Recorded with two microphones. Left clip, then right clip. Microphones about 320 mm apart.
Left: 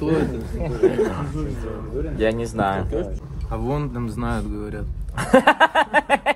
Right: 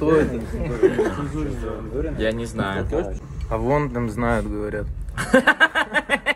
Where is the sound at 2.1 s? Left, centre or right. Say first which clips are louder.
Left 5 dB; centre.